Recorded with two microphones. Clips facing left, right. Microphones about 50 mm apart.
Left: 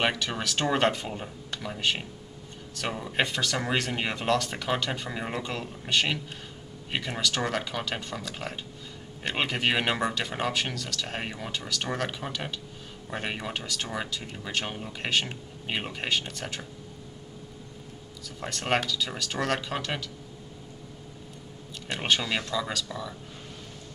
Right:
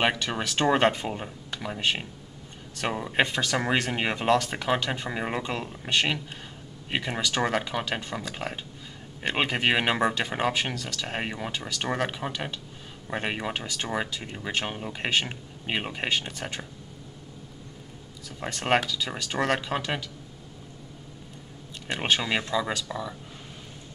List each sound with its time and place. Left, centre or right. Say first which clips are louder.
0.0 s speech: right 2 dB; centre
18.4 s speech: right 3 dB; centre
21.8 s speech: right 1 dB; centre